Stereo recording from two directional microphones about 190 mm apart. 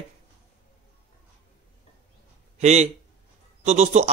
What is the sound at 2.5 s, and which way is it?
Speech, 35° right (ahead or behind).